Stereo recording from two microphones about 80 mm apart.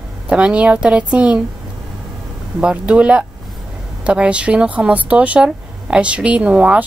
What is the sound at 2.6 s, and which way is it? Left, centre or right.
Speech, centre.